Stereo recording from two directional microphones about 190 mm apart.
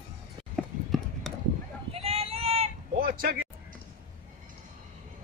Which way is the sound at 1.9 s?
30° right (ahead or behind).